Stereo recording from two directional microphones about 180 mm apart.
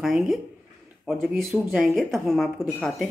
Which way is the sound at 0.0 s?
Centre (ahead or behind).